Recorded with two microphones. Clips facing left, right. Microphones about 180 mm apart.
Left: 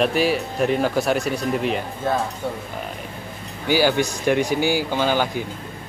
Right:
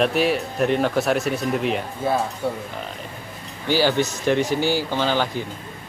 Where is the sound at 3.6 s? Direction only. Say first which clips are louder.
Left 1 dB; 10° left (ahead or behind).